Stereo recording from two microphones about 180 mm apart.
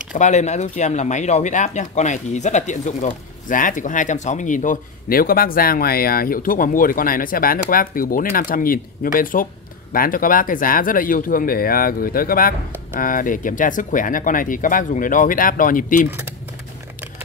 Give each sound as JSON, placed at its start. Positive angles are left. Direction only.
{"t": 0.1, "sound": "speech", "side_deg": 40}
{"t": 16.1, "sound": "speech", "side_deg": -10}